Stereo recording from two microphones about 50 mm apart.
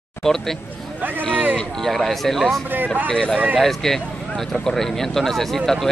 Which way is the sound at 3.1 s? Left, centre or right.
Centre.